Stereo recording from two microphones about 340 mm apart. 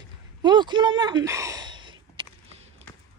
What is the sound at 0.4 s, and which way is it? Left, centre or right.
Speech, centre.